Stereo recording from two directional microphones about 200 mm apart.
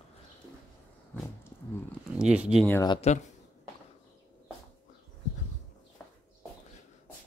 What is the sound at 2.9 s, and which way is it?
Speech, 35° left (ahead or behind).